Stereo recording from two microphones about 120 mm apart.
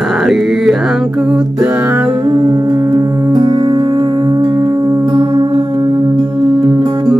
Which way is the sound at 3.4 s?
40° right (ahead or behind).